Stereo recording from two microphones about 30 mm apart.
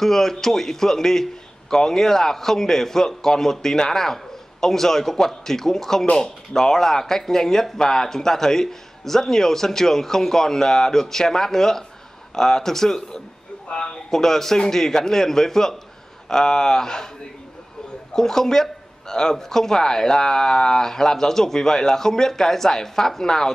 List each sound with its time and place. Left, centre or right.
0.0 s a man's voice: centre
13.7 s a sound: left
14.1 s a man's voice: centre
18.1 s a man's voice: centre